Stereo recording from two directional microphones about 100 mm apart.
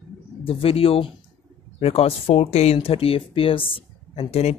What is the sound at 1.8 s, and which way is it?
Speech, 85° left.